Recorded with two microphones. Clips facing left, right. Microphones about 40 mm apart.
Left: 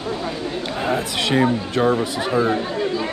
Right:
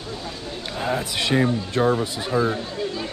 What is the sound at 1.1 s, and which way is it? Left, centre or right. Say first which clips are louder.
Speech: left 1 dB; left.